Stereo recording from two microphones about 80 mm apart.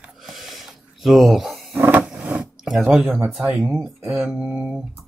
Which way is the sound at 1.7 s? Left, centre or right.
Right.